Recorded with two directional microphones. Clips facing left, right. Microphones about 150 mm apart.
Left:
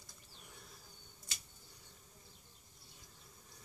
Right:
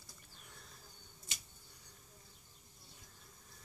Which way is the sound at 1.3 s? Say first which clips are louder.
Right 1 dB; 20° right (ahead or behind).